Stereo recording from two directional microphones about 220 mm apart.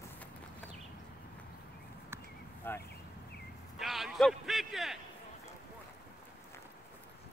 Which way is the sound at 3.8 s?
Centre (ahead or behind).